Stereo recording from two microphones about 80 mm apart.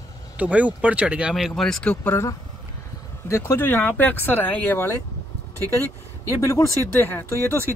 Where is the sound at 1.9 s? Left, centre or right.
Centre.